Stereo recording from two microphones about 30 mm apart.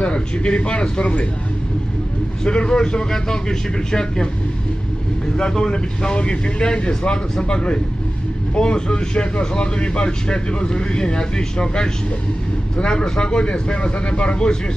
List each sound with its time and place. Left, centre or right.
0.0 s speech: left
2.4 s speech: left
5.4 s speech: left